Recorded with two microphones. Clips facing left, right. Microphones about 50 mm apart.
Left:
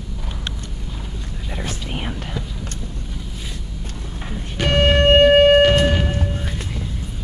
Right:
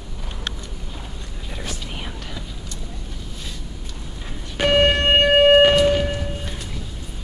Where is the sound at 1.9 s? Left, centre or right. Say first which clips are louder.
Left 5 dB; left.